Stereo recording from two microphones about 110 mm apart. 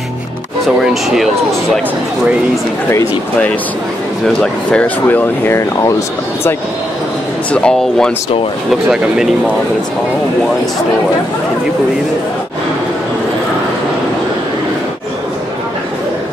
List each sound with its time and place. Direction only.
4.4 s speech: 10° left (ahead or behind); by 6.5 s 30° left (ahead or behind)
7.5 s speech: 10° left (ahead or behind)